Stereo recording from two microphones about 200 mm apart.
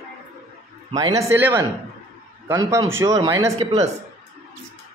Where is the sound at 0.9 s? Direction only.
15° right (ahead or behind).